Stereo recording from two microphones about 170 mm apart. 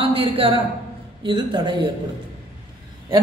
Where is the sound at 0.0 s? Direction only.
35° right (ahead or behind).